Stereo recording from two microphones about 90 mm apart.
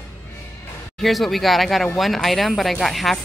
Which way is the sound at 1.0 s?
Centre (ahead or behind).